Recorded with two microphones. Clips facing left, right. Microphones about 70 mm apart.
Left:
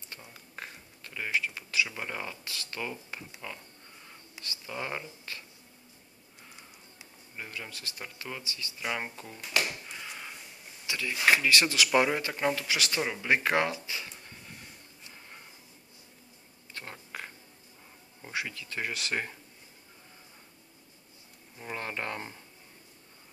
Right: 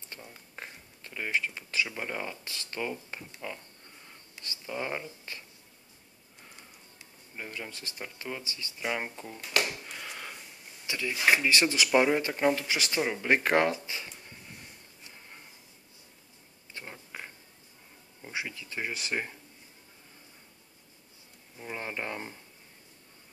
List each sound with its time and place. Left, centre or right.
0.6 s a sound: right
2.0 s speech: right
7.3 s speech: right
9.0 s speech: centre
10.9 s speech: right
18.3 s speech: right
21.7 s a sound: centre